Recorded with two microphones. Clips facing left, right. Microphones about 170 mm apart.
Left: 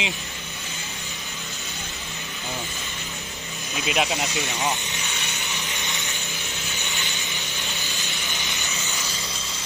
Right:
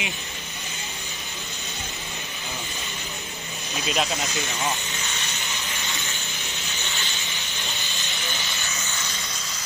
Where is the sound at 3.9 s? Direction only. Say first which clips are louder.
Left 2 dB; 15° left (ahead or behind).